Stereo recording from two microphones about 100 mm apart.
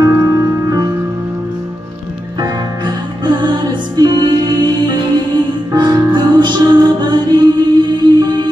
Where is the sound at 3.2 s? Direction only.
50° right (ahead or behind).